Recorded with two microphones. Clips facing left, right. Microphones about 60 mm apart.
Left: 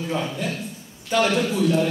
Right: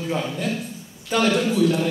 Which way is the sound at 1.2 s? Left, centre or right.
Centre.